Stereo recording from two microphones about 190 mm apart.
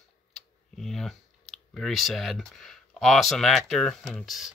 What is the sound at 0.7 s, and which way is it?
Speech, centre (ahead or behind).